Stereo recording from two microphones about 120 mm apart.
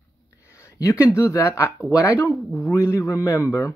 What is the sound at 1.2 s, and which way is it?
A man's voice, 25° left (ahead or behind).